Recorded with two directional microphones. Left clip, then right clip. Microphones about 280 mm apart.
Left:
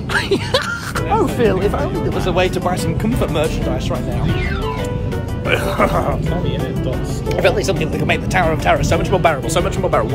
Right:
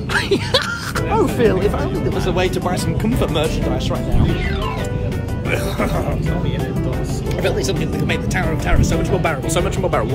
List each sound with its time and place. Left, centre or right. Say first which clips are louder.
0.1 s music: even; centre
1.1 s speech: left 1 dB; centre
5.5 s speech: left 5 dB; centre
7.4 s speech: left 4 dB; centre